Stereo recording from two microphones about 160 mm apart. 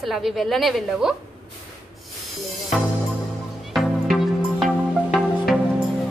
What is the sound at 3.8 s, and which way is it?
Music, centre (ahead or behind).